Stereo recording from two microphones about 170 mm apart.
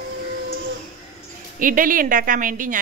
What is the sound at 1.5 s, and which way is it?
A woman's voice, 55° right (ahead or behind).